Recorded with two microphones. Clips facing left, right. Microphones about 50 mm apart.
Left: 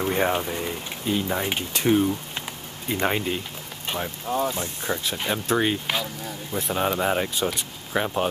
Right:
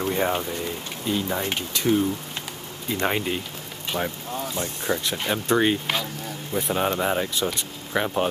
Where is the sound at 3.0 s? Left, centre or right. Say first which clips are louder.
Even; centre.